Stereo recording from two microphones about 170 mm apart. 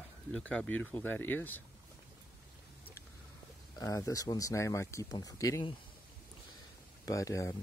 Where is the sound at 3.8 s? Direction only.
20° left (ahead or behind).